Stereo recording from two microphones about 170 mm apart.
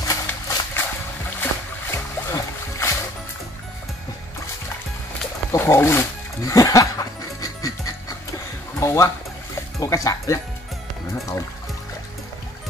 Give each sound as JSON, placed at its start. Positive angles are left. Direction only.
{"t": 0.1, "sound": "horse", "side_deg": 10}
{"t": 1.4, "sound": "boat", "side_deg": 15}
{"t": 5.5, "sound": "music", "side_deg": 15}
{"t": 8.7, "sound": "speech", "side_deg": 15}